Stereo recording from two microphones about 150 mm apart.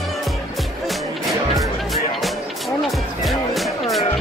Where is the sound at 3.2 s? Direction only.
Centre (ahead or behind).